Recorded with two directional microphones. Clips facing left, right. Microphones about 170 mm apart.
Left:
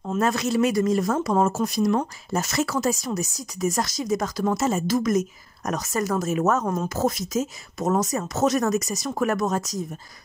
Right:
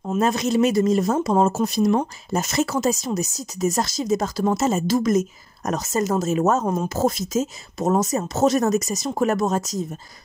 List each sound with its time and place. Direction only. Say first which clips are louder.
0.1 s speech: right 2 dB; 20° right (ahead or behind)